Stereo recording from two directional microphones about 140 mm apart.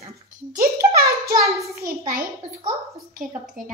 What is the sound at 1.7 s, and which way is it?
Speech, 90° right.